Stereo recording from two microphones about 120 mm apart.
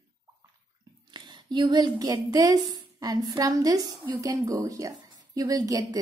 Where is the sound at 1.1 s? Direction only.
40° right (ahead or behind).